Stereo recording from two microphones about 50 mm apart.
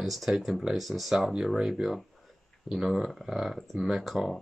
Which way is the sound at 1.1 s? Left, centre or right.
Centre.